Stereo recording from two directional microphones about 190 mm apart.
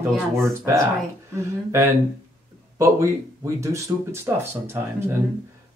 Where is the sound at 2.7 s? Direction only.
15° right (ahead or behind).